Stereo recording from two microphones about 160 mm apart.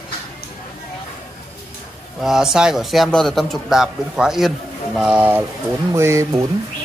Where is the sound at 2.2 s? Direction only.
Centre (ahead or behind).